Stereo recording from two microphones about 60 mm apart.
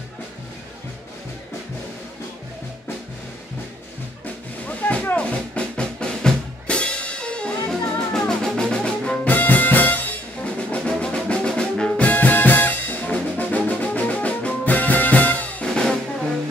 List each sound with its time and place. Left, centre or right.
4.6 s drum: left
8.1 s music: centre
9.3 s music: left; by 12.1 s centre
12.1 s music: left
15.7 s music: centre